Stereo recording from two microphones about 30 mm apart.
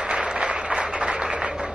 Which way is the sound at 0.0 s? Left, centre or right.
Right.